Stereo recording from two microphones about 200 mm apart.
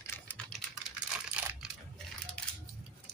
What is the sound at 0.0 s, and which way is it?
Typing, 10° left (ahead or behind).